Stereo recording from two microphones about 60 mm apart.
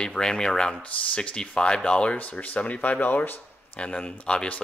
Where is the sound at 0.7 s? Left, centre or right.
Left.